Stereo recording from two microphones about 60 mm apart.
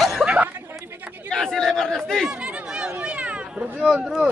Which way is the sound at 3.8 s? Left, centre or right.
Centre.